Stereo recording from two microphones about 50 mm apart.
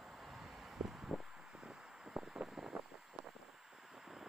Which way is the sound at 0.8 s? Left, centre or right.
Centre.